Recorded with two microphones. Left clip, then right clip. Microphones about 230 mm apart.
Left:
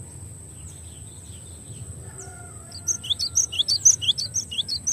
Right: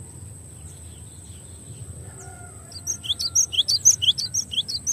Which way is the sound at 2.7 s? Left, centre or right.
Right.